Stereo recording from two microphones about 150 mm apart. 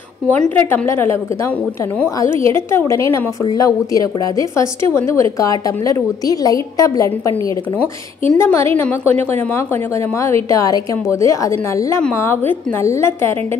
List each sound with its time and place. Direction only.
0.6 s a woman's voice: 15° left (ahead or behind)